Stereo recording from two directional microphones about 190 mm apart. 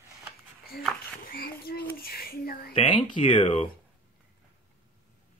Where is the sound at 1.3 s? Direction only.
55° left (ahead or behind).